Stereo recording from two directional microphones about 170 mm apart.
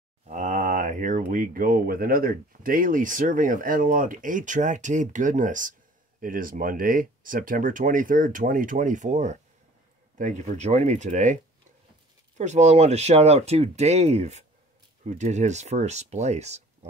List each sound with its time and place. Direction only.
0.3 s speech: 45° right (ahead or behind)
12.4 s speech: 45° right (ahead or behind)